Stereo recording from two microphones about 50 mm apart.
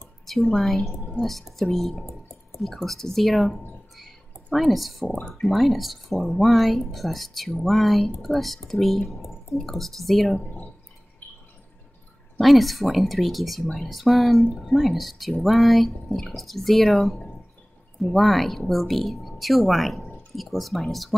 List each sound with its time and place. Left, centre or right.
0.3 s speech: centre
10.4 s drip: left
12.4 s speech: centre